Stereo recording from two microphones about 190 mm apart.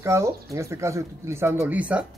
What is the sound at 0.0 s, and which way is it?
Speech, 15° right (ahead or behind).